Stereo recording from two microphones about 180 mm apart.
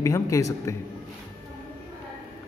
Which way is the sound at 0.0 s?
15° left (ahead or behind).